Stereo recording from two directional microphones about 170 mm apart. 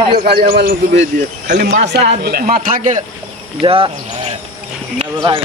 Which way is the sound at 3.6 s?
30° right (ahead or behind).